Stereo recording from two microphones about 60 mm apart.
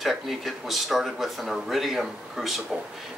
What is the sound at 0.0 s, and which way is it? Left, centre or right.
Speech, centre.